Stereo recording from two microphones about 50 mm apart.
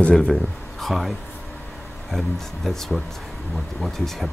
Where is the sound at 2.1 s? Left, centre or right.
Centre.